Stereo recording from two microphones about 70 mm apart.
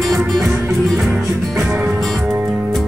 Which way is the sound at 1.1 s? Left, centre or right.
Centre.